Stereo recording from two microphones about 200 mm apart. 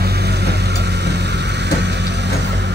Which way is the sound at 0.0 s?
55° right (ahead or behind).